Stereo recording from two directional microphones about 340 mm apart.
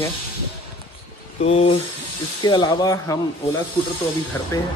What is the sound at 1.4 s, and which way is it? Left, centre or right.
Speech, centre.